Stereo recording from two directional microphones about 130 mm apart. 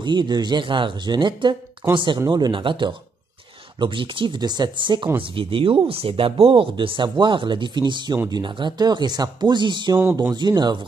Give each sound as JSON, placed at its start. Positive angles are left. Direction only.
{"t": 0.0, "sound": "speech", "side_deg": -35}